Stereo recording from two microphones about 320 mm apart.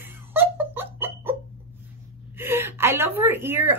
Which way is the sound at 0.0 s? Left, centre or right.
Centre.